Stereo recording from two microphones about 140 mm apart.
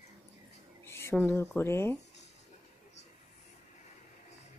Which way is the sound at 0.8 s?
20° left (ahead or behind).